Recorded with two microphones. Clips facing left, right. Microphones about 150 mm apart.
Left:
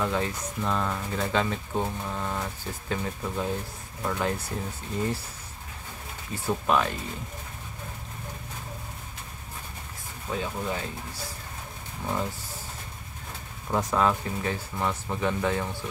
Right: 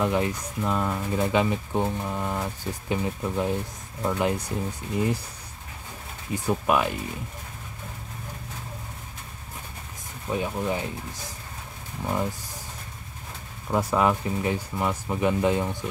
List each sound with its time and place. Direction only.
0.0 s speech: 15° right (ahead or behind)
6.3 s speech: 15° right (ahead or behind)
10.3 s speech: 15° right (ahead or behind)
13.7 s speech: 10° right (ahead or behind)